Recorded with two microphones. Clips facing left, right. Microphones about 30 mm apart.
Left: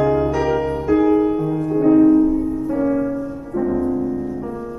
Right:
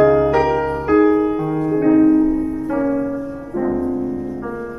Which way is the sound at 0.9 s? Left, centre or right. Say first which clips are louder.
Right 1 dB; centre.